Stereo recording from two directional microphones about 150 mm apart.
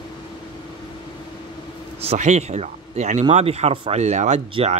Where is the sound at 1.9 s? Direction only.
40° right (ahead or behind).